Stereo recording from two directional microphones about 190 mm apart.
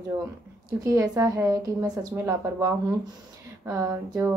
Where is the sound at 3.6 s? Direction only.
15° right (ahead or behind).